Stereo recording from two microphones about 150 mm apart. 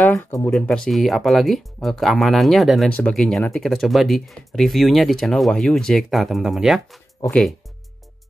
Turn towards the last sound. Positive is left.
turn(degrees=5)  # may be behind; listen again after turning